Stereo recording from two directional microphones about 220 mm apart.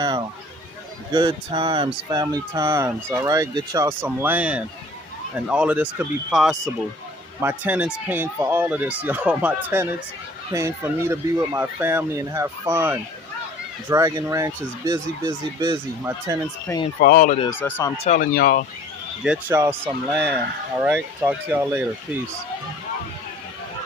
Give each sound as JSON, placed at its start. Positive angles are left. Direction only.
{"t": 1.1, "sound": "speech", "side_deg": -20}
{"t": 7.3, "sound": "speech", "side_deg": -10}
{"t": 16.7, "sound": "speech", "side_deg": 10}
{"t": 17.0, "sound": "speech", "side_deg": 40}
{"t": 17.5, "sound": "speech", "side_deg": 10}
{"t": 18.0, "sound": "speech", "side_deg": 35}
{"t": 19.2, "sound": "speech", "side_deg": -5}